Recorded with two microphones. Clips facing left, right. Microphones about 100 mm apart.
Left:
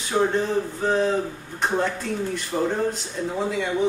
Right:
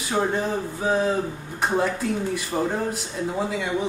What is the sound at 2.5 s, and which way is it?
Speech, 20° right (ahead or behind).